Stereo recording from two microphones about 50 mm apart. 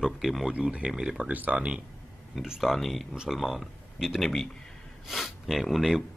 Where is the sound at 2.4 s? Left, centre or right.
Centre.